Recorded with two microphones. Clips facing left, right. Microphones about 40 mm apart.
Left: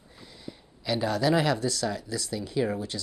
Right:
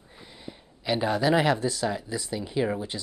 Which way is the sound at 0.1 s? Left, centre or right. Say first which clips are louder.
Right 1 dB; right.